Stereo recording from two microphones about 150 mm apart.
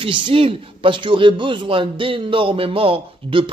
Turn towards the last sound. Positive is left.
turn(degrees=-35)  # may be behind; listen again after turning